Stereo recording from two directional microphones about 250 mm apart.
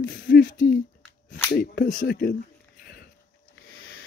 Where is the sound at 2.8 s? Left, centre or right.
Left.